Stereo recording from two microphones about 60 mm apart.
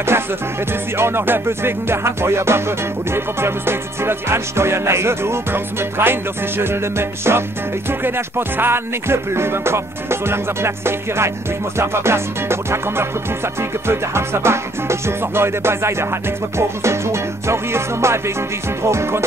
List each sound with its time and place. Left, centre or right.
0.1 s music: right